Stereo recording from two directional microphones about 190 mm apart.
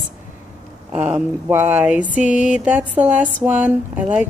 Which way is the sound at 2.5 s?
10° right (ahead or behind).